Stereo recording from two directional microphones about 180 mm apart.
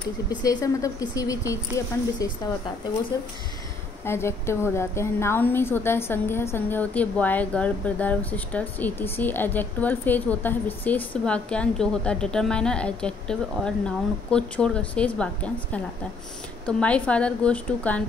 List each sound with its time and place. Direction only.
0.3 s a woman's voice: 20° left (ahead or behind)
3.1 s a woman's voice: 20° left (ahead or behind)